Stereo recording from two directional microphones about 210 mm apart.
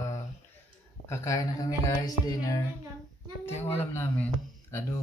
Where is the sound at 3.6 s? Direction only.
30° left (ahead or behind).